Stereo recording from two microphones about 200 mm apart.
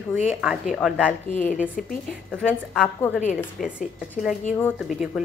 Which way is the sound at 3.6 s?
5° right (ahead or behind).